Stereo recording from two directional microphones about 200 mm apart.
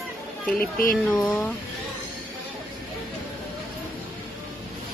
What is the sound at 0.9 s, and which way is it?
Speech, 5° left (ahead or behind).